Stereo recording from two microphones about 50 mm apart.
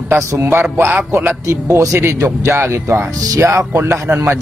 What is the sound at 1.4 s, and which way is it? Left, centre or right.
Speech, right.